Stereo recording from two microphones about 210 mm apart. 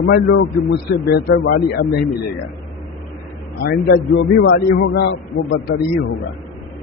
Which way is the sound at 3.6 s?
45° left (ahead or behind).